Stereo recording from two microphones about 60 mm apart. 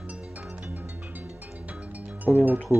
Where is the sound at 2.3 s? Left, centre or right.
Centre.